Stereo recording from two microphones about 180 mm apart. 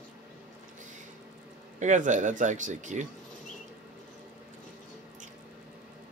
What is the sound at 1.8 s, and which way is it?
Speech, 45° right (ahead or behind).